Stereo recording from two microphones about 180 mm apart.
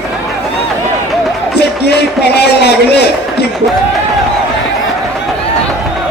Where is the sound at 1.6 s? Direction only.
65° left (ahead or behind).